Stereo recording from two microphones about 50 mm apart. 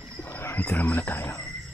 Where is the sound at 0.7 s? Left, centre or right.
Left.